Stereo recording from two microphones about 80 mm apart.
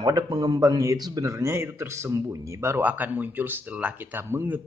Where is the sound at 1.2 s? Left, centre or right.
Right.